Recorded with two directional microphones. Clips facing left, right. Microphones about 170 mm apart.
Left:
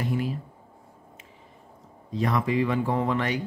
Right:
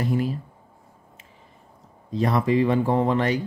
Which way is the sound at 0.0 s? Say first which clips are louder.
Right 4 dB; 40° right (ahead or behind).